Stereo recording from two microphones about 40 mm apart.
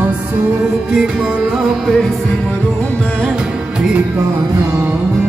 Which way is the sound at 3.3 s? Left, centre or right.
Right.